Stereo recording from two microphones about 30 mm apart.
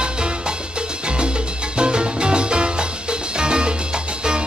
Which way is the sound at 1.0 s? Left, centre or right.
Right.